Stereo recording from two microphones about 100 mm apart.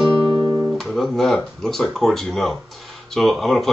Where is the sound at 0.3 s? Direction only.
50° right (ahead or behind).